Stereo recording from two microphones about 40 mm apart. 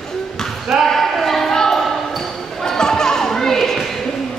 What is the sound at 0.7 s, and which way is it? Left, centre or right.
Basketball bounce, centre.